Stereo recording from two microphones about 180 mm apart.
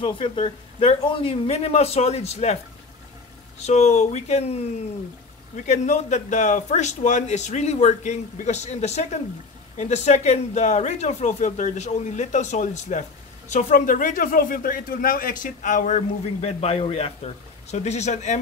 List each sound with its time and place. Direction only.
0.0 s a man's voice: 30° left (ahead or behind)